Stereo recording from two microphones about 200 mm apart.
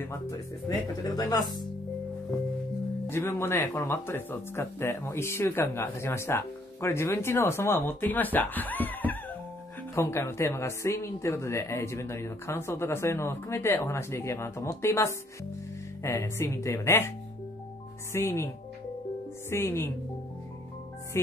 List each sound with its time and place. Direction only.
0.0 s speech: 15° left (ahead or behind)
3.1 s speech: 10° left (ahead or behind)
18.1 s speech: 10° left (ahead or behind)
19.5 s speech: 10° left (ahead or behind)